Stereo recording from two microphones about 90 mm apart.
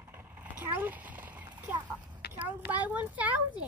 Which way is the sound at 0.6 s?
20° right (ahead or behind).